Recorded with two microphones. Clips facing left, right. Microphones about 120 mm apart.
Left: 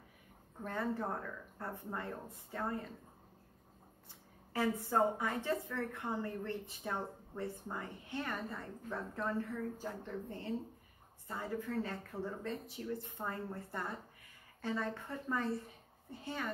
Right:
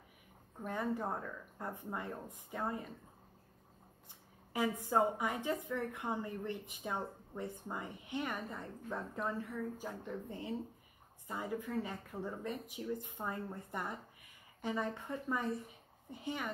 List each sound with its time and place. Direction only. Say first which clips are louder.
0.6 s a woman's voice: even; 15° right (ahead or behind)
4.6 s a woman's voice: even; 15° right (ahead or behind)